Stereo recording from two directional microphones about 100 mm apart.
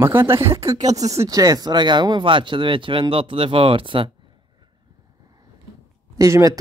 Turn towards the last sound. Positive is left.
turn(degrees=-35)  # may be behind; listen again after turning